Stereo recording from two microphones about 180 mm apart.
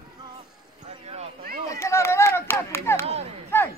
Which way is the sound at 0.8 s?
35° right (ahead or behind).